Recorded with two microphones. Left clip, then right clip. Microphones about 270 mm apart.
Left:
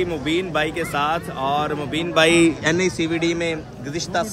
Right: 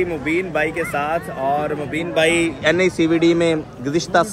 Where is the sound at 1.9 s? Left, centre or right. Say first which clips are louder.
Left 1 dB; left.